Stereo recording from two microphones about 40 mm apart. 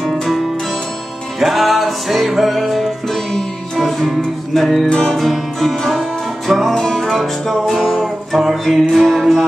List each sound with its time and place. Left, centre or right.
1.4 s music: centre
4.8 s music: centre
5.2 s music: centre
6.7 s music: centre
7.1 s music: centre
8.3 s music: centre